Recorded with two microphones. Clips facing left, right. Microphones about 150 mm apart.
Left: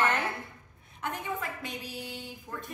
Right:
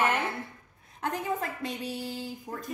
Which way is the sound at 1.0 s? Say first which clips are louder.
Right 4 dB; 40° right (ahead or behind).